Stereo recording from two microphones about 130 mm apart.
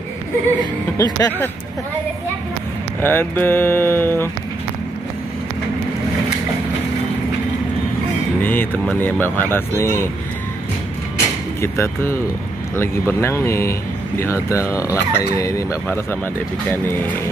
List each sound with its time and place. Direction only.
0.9 s speech: 30° left (ahead or behind)
3.0 s speech: 15° left (ahead or behind)
8.4 s speech: 15° left (ahead or behind)
11.6 s speech: 20° left (ahead or behind)